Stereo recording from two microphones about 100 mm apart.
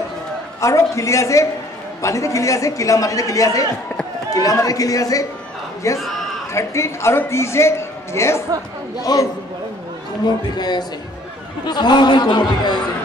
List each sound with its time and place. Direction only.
0.6 s a man's voice: 30° left (ahead or behind)
10.5 s speech: 45° left (ahead or behind)